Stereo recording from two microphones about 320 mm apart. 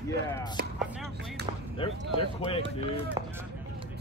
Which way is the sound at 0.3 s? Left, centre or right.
Centre.